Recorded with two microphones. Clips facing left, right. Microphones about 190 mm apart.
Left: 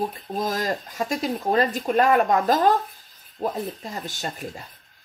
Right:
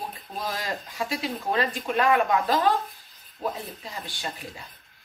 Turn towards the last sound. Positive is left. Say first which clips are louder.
# left 4 dB
turn(degrees=45)  # may be behind; listen again after turning